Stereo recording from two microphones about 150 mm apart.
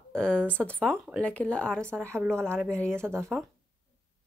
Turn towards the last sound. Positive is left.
turn(degrees=-15)  # may be behind; listen again after turning